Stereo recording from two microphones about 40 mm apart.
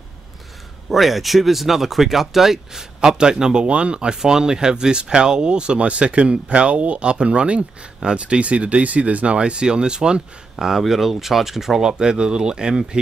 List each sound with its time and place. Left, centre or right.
0.8 s speech: centre
3.0 s speech: centre